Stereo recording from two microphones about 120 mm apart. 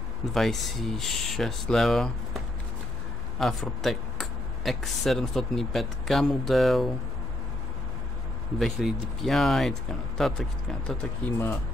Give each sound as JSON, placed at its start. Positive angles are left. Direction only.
{"t": 0.3, "sound": "speech", "side_deg": 0}
{"t": 3.3, "sound": "speech", "side_deg": 0}
{"t": 8.5, "sound": "speech", "side_deg": 0}
{"t": 11.2, "sound": "speech", "side_deg": 20}